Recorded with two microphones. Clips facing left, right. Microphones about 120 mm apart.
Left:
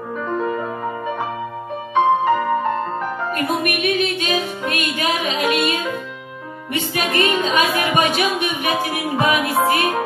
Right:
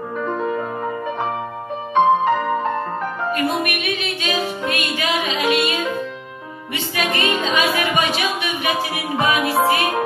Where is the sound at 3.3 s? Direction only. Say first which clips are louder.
Right 1 dB; 45° left (ahead or behind).